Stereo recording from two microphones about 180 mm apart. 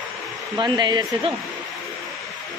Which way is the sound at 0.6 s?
25° right (ahead or behind).